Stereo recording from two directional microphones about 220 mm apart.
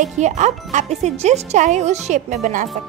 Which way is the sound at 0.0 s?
30° right (ahead or behind).